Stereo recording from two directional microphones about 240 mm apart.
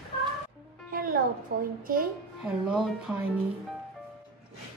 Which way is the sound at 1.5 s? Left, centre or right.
Right.